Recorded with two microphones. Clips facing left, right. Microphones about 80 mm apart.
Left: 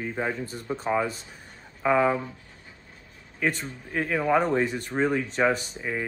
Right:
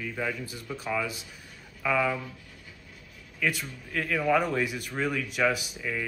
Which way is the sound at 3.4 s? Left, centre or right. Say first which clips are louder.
Left 2 dB; left.